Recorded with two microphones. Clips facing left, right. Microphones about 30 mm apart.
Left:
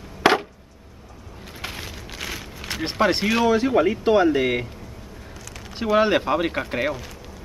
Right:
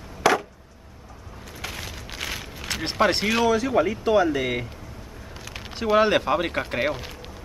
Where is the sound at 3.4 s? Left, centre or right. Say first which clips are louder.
Left 4 dB; left.